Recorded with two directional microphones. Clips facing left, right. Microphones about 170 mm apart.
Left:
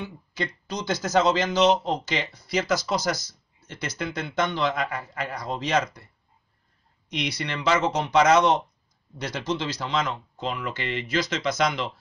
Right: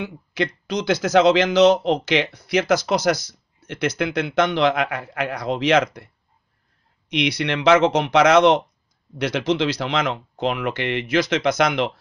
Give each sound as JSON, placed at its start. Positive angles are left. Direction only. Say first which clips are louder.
{"t": 0.0, "sound": "speech", "louder": "right 7 dB", "side_deg": -80}
{"t": 7.1, "sound": "speech", "louder": "right 8 dB", "side_deg": -75}